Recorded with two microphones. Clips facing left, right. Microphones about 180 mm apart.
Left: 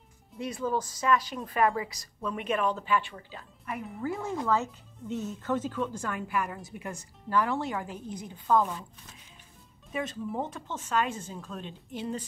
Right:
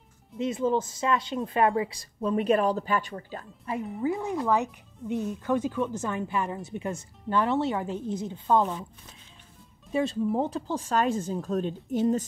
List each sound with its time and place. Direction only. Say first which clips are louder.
0.4 s speech: right 5 dB; 25° right (ahead or behind); by 3.4 s 45° right (ahead or behind)
3.6 s speech: right 5 dB; 20° right (ahead or behind)
9.9 s speech: right 7 dB; 30° right (ahead or behind)